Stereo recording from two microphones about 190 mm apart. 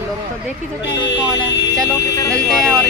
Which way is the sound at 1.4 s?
70° left (ahead or behind).